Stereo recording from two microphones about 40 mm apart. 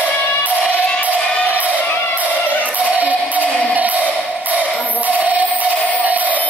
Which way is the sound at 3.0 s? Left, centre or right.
Right.